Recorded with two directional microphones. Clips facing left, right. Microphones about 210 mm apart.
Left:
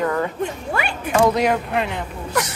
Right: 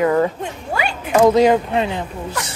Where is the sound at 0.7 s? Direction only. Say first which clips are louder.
Right 2 dB; 55° left (ahead or behind).